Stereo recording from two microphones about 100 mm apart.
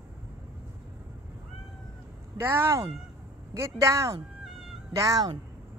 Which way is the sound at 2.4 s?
25° right (ahead or behind).